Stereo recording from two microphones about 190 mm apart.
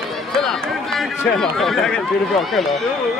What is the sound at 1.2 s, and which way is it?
Speech, centre (ahead or behind).